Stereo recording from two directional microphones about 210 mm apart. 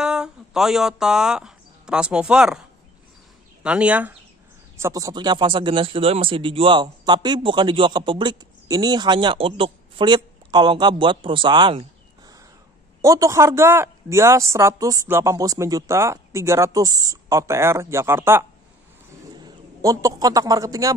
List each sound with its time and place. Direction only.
0.0 s speech: 5° right (ahead or behind)
3.6 s speech: 5° right (ahead or behind); by 11.8 s 20° right (ahead or behind)
13.0 s a man's voice: 15° right (ahead or behind)